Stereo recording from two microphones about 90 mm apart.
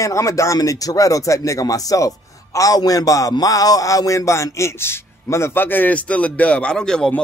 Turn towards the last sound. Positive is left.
turn(degrees=10)  # may be behind; listen again after turning